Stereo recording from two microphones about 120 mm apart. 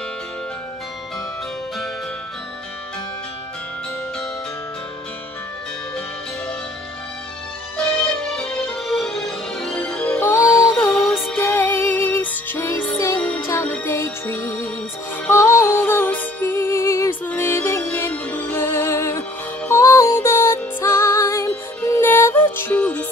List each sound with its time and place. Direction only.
7.7 s music: 5° left (ahead or behind)
10.2 s music: 20° left (ahead or behind)
11.0 s music: centre (ahead or behind)
11.3 s music: 15° left (ahead or behind)